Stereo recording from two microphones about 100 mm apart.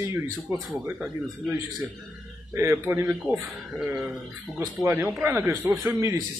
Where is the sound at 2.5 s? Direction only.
25° right (ahead or behind).